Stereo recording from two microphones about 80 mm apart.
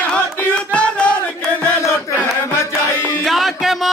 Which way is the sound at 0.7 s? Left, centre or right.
Centre.